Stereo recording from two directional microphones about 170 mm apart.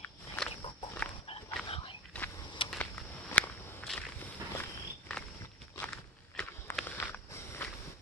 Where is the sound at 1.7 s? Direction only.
30° left (ahead or behind).